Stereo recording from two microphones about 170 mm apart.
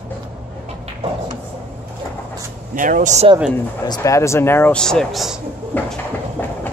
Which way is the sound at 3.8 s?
20° left (ahead or behind).